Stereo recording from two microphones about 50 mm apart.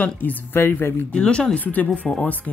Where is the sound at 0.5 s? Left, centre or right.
Left.